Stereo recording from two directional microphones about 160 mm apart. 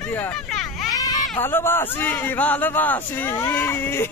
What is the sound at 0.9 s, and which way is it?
Baby cry, 25° left (ahead or behind).